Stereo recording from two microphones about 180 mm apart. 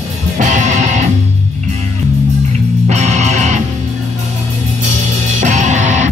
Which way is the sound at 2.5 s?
40° right (ahead or behind).